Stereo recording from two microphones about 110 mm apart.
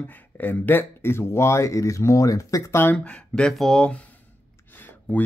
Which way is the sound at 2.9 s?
10° left (ahead or behind).